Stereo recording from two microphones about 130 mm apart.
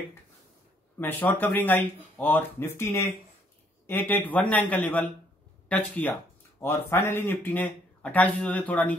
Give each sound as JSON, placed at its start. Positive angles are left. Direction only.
{"t": 0.9, "sound": "speech", "side_deg": 15}